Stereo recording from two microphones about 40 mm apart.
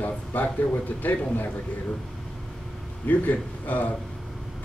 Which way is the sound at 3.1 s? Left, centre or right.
Left.